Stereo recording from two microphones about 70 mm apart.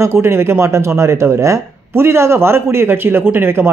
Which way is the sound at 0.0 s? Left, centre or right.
Right.